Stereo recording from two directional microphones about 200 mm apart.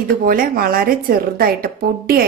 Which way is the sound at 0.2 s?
45° right (ahead or behind).